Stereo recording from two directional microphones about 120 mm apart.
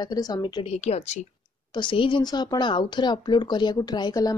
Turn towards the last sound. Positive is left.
turn(degrees=30)  # may be behind; listen again after turning